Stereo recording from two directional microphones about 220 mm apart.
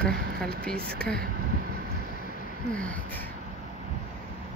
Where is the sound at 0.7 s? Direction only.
45° right (ahead or behind).